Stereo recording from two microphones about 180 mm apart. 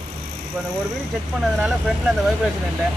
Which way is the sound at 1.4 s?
5° right (ahead or behind).